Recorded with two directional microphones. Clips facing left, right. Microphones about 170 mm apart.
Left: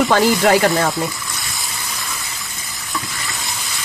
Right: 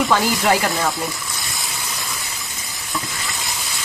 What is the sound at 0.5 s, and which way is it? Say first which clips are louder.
Speech: left 3 dB; 55° left (ahead or behind).